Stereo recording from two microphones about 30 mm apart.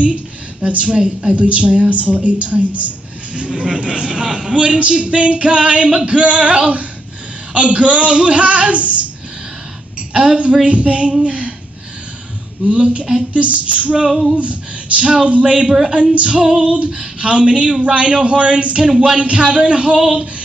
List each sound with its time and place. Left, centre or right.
0.0 s a sound: right
1.3 s a woman's voice: right
3.3 s a woman's voice: right
10.1 s speech: right
11.2 s a sound: right
12.6 s a woman's voice: right
18.9 s speech: right
19.1 s speech: right
20.0 s speech: centre